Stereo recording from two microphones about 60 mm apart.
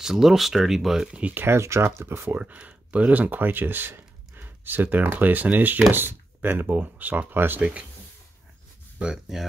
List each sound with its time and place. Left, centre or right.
0.0 s speech: centre
1.3 s speech: right
2.2 s speech: right
8.9 s speech: centre